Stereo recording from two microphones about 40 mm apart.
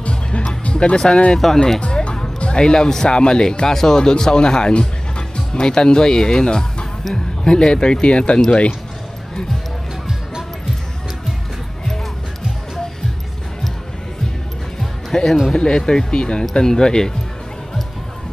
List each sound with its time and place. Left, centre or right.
0.0 s music: left
0.9 s speech: centre
1.4 s speech: centre
1.8 s music: left
3.2 s speech: centre
15.1 s music: left
15.5 s speech: centre